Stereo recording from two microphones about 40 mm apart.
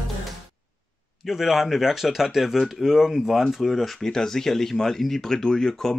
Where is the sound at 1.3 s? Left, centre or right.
Centre.